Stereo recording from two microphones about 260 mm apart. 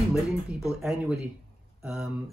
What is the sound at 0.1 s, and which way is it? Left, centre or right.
Speech, centre.